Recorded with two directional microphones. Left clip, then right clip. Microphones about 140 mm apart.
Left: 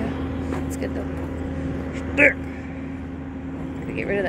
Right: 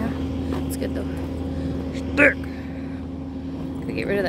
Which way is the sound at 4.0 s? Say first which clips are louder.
Right 1 dB; 10° right (ahead or behind).